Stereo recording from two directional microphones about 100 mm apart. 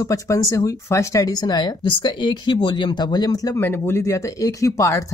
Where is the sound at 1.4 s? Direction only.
45° left (ahead or behind).